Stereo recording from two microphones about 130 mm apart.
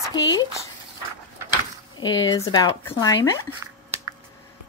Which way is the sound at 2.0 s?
30° left (ahead or behind).